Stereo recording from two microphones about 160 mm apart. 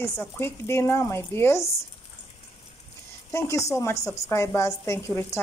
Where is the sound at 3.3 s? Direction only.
20° left (ahead or behind).